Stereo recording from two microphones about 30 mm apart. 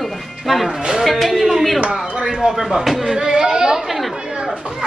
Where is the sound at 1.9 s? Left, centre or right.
Centre.